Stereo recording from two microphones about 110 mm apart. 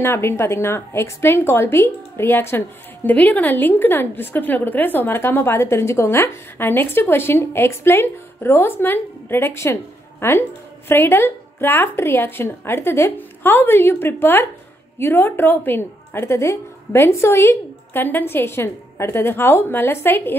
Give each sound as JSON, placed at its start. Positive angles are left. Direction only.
{"t": 0.0, "sound": "a woman's voice", "side_deg": 20}